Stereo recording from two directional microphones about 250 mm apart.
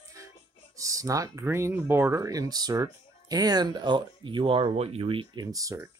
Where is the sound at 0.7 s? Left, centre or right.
Centre.